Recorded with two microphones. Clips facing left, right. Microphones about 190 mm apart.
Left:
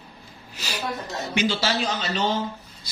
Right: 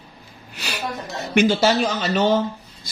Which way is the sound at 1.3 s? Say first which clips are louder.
Right 8 dB; 50° right (ahead or behind).